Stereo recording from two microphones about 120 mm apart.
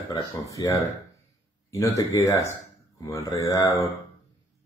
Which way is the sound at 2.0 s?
25° left (ahead or behind).